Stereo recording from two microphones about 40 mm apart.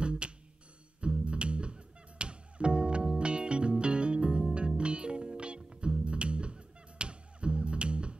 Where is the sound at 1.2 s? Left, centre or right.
Right.